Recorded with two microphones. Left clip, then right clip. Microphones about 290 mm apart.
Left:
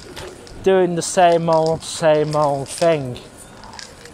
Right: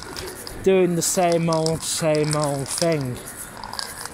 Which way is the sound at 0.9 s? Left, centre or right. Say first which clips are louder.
Left 6 dB; left.